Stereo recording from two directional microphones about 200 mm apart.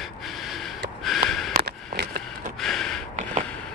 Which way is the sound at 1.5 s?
55° right (ahead or behind).